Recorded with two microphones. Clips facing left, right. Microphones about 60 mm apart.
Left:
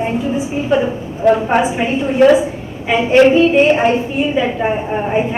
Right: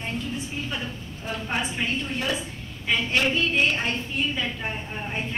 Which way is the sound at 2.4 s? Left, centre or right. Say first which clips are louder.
Left 10 dB; centre.